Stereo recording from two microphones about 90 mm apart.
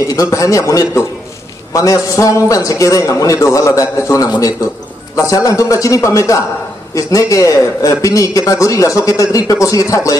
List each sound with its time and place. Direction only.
0.0 s a man's voice: 40° left (ahead or behind)